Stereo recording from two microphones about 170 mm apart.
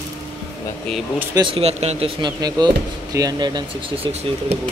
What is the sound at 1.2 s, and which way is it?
Speech, 25° right (ahead or behind).